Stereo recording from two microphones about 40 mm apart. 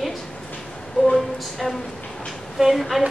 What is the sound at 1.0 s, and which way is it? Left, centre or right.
Speech, centre.